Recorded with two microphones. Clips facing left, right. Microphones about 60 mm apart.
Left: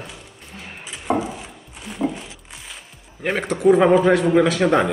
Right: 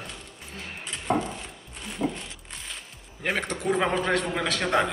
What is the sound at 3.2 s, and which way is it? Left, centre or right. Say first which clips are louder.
Speech: left 10 dB; centre.